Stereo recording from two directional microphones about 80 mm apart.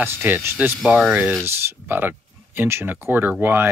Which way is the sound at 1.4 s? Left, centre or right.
Right.